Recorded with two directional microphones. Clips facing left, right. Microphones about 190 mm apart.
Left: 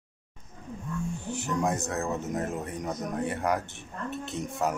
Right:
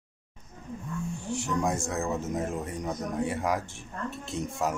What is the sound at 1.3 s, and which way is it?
Speech, centre (ahead or behind).